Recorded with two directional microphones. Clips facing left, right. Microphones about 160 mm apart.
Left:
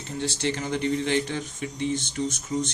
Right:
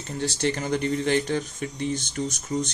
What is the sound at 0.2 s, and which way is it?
Speech, 45° right (ahead or behind).